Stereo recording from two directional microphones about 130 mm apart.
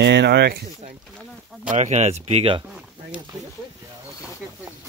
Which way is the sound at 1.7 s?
60° right (ahead or behind).